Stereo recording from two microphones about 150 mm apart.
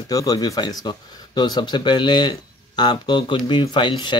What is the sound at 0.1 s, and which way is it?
Speech, 25° left (ahead or behind).